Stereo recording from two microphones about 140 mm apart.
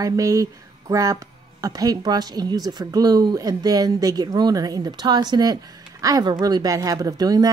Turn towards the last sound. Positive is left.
turn(degrees=-25)  # may be behind; listen again after turning